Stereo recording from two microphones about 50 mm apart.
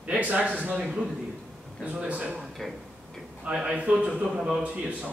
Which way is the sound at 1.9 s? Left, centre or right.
Centre.